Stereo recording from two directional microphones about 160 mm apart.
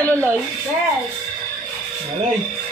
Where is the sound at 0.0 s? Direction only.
15° right (ahead or behind).